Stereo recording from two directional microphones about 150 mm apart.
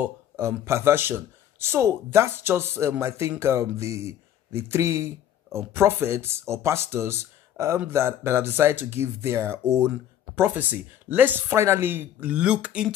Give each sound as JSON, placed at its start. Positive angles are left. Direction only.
{"t": 0.0, "sound": "speech", "side_deg": -15}